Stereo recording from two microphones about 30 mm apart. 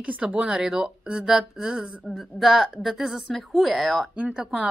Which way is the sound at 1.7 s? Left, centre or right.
Right.